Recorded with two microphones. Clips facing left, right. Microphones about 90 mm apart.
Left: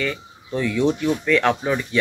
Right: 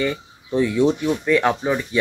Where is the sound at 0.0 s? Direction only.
20° right (ahead or behind).